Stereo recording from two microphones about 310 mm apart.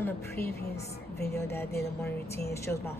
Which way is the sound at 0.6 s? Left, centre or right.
Left.